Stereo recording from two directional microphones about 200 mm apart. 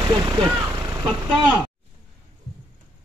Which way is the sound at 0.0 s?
20° right (ahead or behind).